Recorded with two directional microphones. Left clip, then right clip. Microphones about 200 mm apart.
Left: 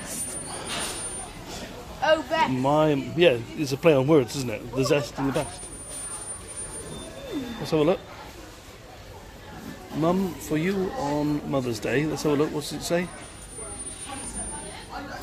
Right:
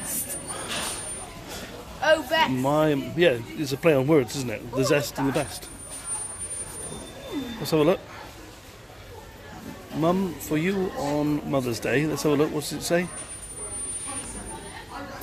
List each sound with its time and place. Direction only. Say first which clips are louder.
2.0 s a man's voice: right 1 dB; 5° right (ahead or behind)
7.6 s speech: right 1 dB; 15° right (ahead or behind)
10.0 s speech: right 1 dB; 10° right (ahead or behind)